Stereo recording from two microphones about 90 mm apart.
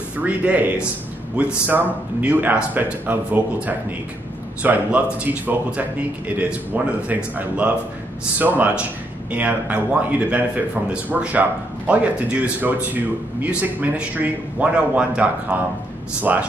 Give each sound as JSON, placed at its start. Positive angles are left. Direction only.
{"t": 0.2, "sound": "a man's voice", "side_deg": -15}